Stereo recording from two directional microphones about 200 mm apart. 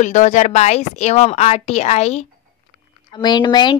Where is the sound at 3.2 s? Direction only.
20° left (ahead or behind).